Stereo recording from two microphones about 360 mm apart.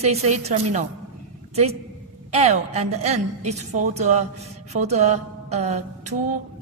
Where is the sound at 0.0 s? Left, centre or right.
Centre.